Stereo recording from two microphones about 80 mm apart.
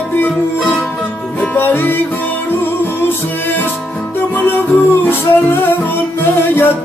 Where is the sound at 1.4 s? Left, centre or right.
Left.